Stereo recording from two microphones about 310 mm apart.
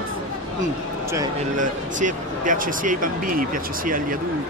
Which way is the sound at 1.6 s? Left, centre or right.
Right.